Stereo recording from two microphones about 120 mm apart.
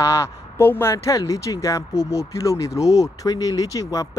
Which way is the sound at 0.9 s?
30° left (ahead or behind).